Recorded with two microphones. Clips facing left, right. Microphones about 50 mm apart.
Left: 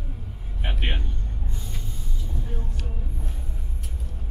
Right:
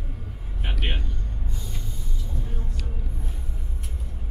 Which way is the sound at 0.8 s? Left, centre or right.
Centre.